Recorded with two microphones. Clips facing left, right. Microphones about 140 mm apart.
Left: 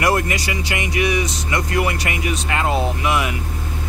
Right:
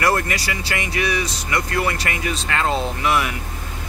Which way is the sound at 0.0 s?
15° left (ahead or behind).